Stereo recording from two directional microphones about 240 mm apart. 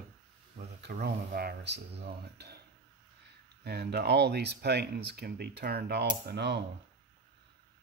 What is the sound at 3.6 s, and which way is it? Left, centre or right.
Speech, right.